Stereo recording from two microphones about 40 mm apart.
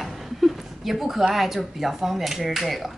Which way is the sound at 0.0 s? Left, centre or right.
Centre.